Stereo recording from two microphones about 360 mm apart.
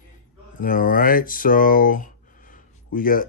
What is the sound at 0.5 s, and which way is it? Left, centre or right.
Speech, left.